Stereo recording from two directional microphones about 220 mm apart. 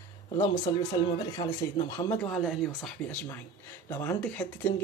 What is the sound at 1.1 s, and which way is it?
Speech, 15° left (ahead or behind).